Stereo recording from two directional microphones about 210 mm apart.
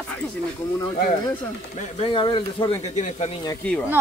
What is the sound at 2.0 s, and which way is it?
Speech, 25° left (ahead or behind).